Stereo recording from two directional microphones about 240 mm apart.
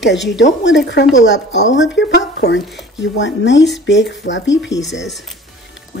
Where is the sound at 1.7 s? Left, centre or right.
Left.